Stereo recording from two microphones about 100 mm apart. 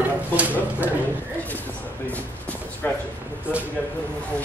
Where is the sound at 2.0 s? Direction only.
15° left (ahead or behind).